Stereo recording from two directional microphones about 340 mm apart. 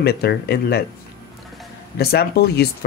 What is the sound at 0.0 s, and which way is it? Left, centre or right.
Speech, left.